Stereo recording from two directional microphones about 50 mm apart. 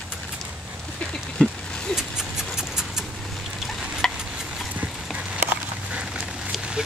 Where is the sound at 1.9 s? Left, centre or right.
Centre.